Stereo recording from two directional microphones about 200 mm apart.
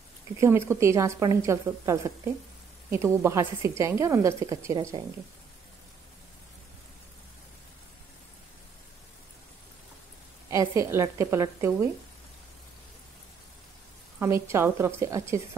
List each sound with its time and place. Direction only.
0.4 s a woman's voice: 15° right (ahead or behind)
10.5 s a woman's voice: 15° right (ahead or behind)
14.2 s a woman's voice: 15° right (ahead or behind)